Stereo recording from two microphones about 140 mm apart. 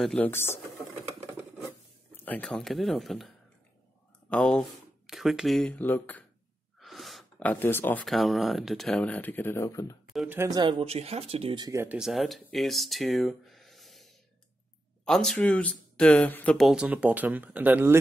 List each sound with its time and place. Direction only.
0.0 s speech: 10° left (ahead or behind)
2.2 s speech: 10° left (ahead or behind)
4.3 s speech: 5° left (ahead or behind)
6.8 s a sound: centre (ahead or behind)
7.4 s speech: 15° left (ahead or behind)
8.0 s speech: centre (ahead or behind); by 9.9 s 20° left (ahead or behind)
10.2 s speech: 15° right (ahead or behind)
10.5 s speech: 30° right (ahead or behind)
10.9 s speech: 45° right (ahead or behind)
11.7 s speech: 20° right (ahead or behind)
12.0 s speech: centre (ahead or behind)
16.7 s speech: 10° right (ahead or behind)